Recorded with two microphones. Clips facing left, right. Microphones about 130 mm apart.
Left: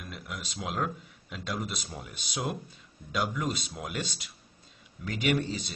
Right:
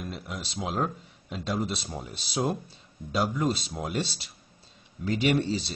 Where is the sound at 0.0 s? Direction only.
30° right (ahead or behind).